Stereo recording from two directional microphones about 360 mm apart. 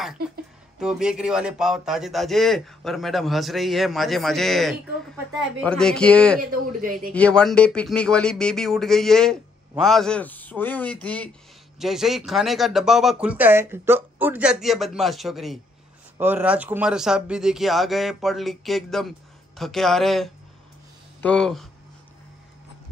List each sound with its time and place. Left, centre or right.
0.7 s speech: centre
6.8 s a man's voice: right
7.2 s speech: centre